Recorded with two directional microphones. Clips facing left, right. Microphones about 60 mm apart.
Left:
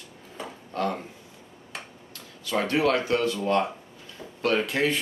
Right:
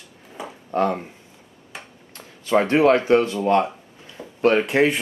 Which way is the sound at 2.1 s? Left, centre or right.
Right.